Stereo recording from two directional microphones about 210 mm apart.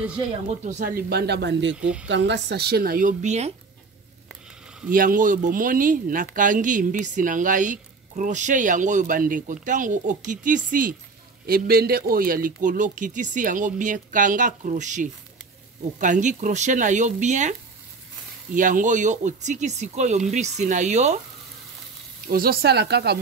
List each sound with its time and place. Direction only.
0.5 s a woman's voice: 35° right (ahead or behind); by 1.8 s 55° right (ahead or behind)
1.8 s speech: 5° right (ahead or behind)
2.0 s a woman's voice: 55° right (ahead or behind); by 3.5 s 30° right (ahead or behind)
4.9 s speech: 40° right (ahead or behind)
22.3 s a woman's voice: 45° right (ahead or behind)